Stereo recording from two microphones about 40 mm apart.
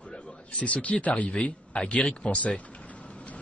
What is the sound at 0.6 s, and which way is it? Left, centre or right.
Speech, left.